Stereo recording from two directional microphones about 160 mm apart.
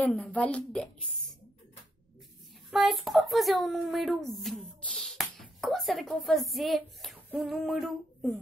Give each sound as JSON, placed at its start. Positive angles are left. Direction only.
{"t": 0.0, "sound": "a woman's voice", "side_deg": 10}
{"t": 2.7, "sound": "speech", "side_deg": 0}
{"t": 7.2, "sound": "a sound", "side_deg": -5}